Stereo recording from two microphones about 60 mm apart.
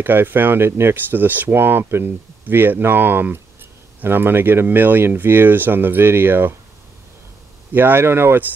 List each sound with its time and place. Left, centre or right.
0.0 s speech: right
7.7 s speech: right